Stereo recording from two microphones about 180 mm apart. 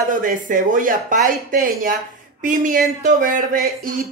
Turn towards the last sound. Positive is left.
turn(degrees=-50)  # may be behind; listen again after turning